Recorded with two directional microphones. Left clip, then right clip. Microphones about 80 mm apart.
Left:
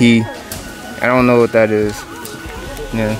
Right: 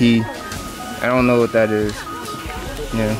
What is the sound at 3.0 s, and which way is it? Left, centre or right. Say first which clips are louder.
Speech: left 2 dB; left.